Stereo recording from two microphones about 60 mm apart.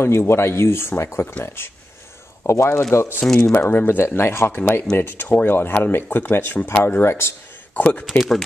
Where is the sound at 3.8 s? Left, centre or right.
Left.